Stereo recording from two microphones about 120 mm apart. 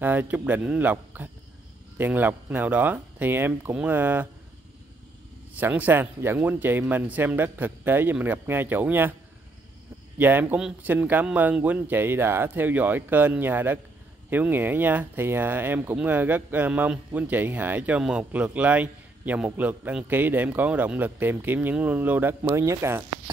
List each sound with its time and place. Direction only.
0.0 s speech: 15° right (ahead or behind)
5.6 s speech: 15° right (ahead or behind)
10.1 s speech: 15° right (ahead or behind)